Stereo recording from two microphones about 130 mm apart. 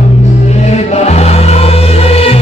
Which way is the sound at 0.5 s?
55° left (ahead or behind).